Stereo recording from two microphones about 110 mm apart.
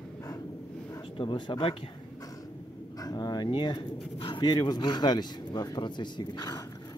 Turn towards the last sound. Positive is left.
turn(degrees=40)  # may be behind; listen again after turning